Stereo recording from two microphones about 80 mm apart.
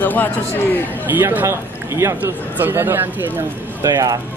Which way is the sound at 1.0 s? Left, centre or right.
Right.